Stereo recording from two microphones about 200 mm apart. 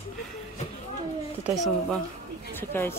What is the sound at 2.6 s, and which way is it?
Speech, 10° left (ahead or behind).